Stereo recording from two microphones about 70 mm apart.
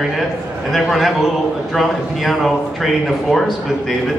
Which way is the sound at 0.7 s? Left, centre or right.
Centre.